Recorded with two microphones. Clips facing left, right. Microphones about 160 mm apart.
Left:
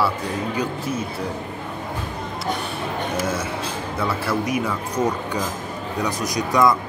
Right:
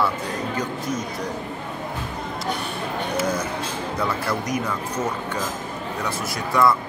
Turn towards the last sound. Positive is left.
turn(degrees=15)  # may be behind; listen again after turning